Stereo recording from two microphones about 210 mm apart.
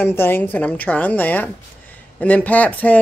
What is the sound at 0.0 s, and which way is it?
Speech, 10° left (ahead or behind).